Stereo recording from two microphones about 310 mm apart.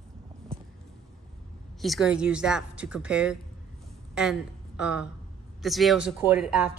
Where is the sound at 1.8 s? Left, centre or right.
Centre.